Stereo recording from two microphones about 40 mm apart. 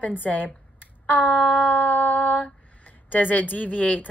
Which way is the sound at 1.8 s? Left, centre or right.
Left.